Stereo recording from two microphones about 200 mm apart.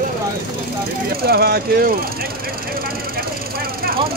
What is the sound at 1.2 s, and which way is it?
Speech, 50° right (ahead or behind).